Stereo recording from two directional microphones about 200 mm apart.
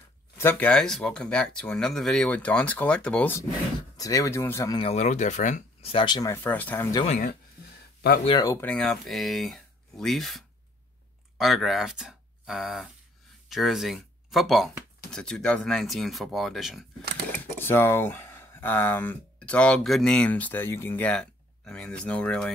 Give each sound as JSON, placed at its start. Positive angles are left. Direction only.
{"t": 0.4, "sound": "speech", "side_deg": 10}
{"t": 4.7, "sound": "speech", "side_deg": 30}
{"t": 7.1, "sound": "speech", "side_deg": 40}
{"t": 8.3, "sound": "speech", "side_deg": 20}
{"t": 8.6, "sound": "speech", "side_deg": 5}
{"t": 17.6, "sound": "speech", "side_deg": 10}